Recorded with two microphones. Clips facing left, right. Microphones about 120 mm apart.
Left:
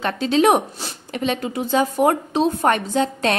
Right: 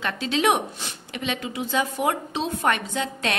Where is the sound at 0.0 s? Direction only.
40° left (ahead or behind).